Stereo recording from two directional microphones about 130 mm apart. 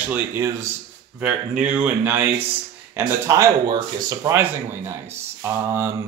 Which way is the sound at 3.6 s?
35° right (ahead or behind).